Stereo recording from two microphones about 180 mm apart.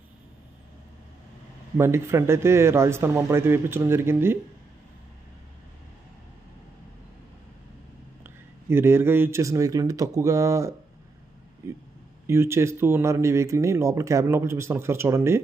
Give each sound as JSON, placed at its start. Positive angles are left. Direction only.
{"t": 1.8, "sound": "speech", "side_deg": -15}
{"t": 8.6, "sound": "speech", "side_deg": -15}
{"t": 12.3, "sound": "speech", "side_deg": -15}